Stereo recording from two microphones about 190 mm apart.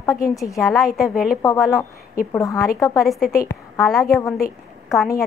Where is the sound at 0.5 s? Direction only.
Centre (ahead or behind).